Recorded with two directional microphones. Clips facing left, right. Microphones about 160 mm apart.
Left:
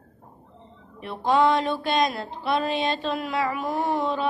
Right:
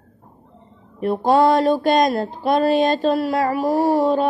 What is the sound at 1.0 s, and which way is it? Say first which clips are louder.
Speech: right 6 dB; 40° right (ahead or behind).